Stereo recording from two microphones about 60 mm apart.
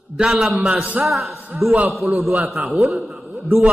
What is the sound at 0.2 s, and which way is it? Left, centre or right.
A man's voice, centre.